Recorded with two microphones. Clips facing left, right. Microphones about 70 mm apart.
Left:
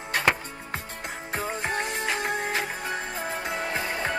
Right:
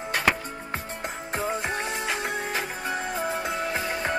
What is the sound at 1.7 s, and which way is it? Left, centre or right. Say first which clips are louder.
Music: left 1 dB; left.